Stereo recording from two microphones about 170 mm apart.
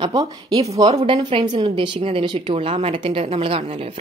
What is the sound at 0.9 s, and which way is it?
A woman's voice, 35° right (ahead or behind).